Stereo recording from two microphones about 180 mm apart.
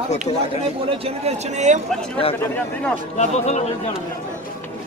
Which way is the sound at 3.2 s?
40° left (ahead or behind).